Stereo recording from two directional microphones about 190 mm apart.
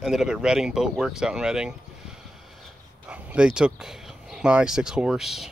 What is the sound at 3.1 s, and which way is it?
Speech, 5° right (ahead or behind).